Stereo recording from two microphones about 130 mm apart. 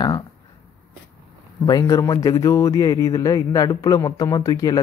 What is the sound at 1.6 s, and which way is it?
Speech, 25° left (ahead or behind).